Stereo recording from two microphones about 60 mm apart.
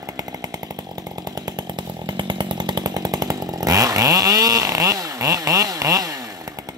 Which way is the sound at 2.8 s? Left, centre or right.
Right.